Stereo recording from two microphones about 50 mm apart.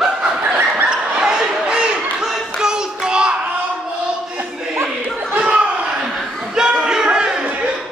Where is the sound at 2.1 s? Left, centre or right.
Centre.